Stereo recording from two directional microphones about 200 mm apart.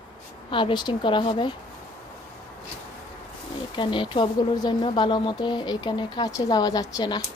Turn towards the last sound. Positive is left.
turn(degrees=20)  # may be behind; listen again after turning